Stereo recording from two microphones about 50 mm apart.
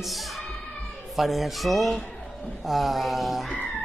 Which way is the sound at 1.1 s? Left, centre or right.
Centre.